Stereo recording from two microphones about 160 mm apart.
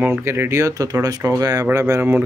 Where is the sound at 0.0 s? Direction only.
15° right (ahead or behind).